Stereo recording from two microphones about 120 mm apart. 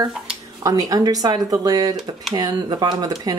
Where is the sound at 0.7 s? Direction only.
30° right (ahead or behind).